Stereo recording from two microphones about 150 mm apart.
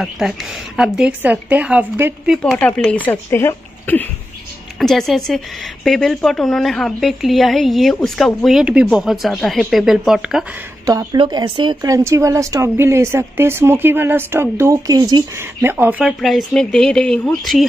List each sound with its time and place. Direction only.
0.0 s speech: centre (ahead or behind)
2.3 s a woman's voice: centre (ahead or behind)
4.7 s a woman's voice: centre (ahead or behind)
10.9 s speech: 25° right (ahead or behind)
15.6 s speech: 15° right (ahead or behind)
16.0 s a woman's voice: centre (ahead or behind)